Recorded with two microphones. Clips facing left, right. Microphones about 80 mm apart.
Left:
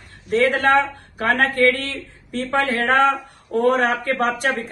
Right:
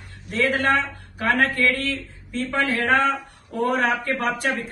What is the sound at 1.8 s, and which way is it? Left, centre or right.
A woman's voice, left.